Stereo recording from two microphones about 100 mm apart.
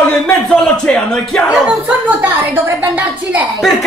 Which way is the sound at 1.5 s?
10° right (ahead or behind).